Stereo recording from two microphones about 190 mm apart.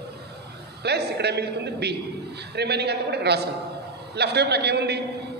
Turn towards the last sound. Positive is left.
turn(degrees=-60)  # may be behind; listen again after turning